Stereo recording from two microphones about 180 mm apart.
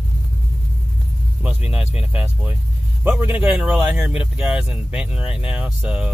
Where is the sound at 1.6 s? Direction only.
35° left (ahead or behind).